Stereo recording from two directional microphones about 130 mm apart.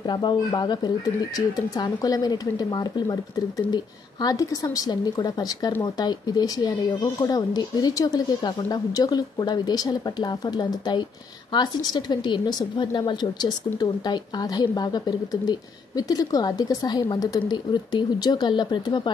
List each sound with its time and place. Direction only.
0.0 s speech: 35° left (ahead or behind)